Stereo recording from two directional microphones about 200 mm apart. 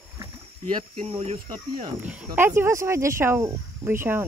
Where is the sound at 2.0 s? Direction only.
10° right (ahead or behind).